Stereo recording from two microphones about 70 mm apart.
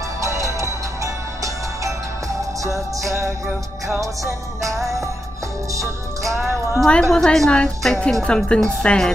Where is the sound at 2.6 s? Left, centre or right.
Right.